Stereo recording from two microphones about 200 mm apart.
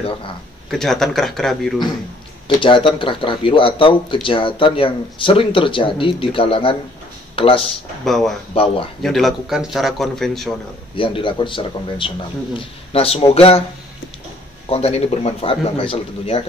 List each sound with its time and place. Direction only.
0.0 s speech: 25° left (ahead or behind)
0.7 s speech: centre (ahead or behind)
2.4 s speech: 25° left (ahead or behind)
8.0 s speech: centre (ahead or behind)
11.0 s speech: 25° left (ahead or behind)
14.7 s speech: 30° left (ahead or behind)